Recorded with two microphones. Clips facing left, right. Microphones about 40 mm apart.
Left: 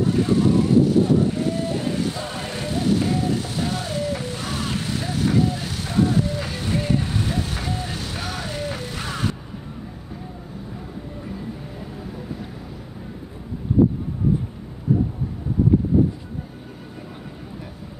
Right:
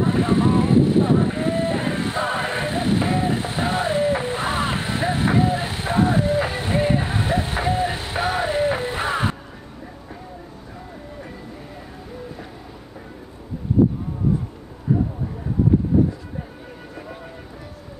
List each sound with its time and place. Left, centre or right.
0.0 s vehicle: right